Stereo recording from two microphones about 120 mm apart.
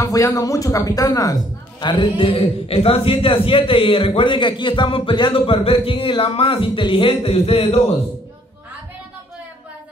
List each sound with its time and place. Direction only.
0.0 s a woman's voice: 30° left (ahead or behind); by 7.8 s 55° left (ahead or behind)